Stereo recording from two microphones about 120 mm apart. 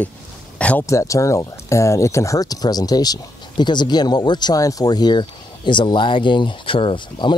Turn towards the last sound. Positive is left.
turn(degrees=40)  # may be behind; listen again after turning